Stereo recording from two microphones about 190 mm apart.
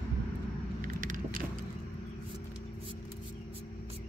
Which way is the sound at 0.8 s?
45° right (ahead or behind).